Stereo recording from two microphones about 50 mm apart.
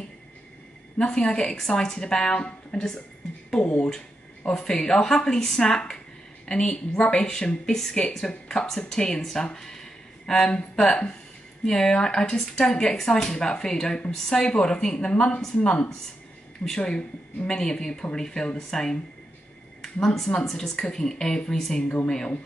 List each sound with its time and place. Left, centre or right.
0.9 s a woman's voice: centre
20.2 s speech: centre
20.4 s a woman's voice: centre
21.8 s speech: left